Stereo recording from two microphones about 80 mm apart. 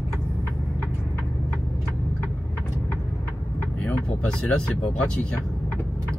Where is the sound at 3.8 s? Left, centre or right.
Centre.